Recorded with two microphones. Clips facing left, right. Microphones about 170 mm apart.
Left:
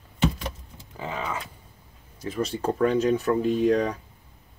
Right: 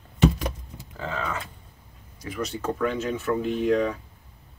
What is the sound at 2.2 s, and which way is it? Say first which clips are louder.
Speech: left 3 dB; 30° left (ahead or behind).